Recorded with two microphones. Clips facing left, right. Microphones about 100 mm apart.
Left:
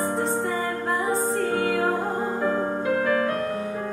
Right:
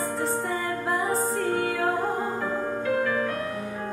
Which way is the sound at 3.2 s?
45° left (ahead or behind).